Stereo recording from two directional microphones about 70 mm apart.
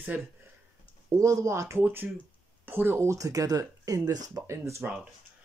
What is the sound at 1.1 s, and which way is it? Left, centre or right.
Speech, right.